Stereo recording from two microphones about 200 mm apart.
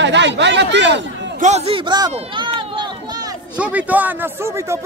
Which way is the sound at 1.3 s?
35° right (ahead or behind).